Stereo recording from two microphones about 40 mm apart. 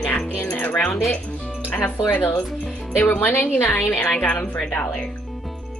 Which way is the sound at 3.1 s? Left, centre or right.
Left.